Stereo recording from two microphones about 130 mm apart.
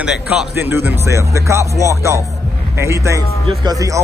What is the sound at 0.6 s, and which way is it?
A man's voice, 15° right (ahead or behind).